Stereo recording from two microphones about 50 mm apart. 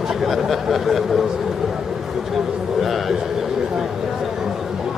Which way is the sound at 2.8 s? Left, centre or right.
Centre.